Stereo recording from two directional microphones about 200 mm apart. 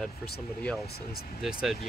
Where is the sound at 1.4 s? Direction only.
Centre (ahead or behind).